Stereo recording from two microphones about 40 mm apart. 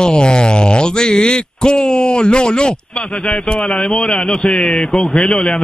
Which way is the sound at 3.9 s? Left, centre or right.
Centre.